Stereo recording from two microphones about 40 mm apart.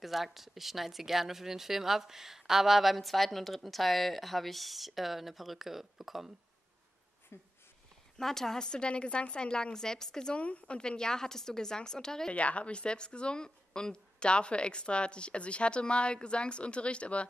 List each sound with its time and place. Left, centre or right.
0.0 s a woman's voice: centre
7.3 s speech: left
8.2 s a woman's voice: centre
10.3 s a woman's voice: left
10.8 s a woman's voice: centre
12.3 s a woman's voice: left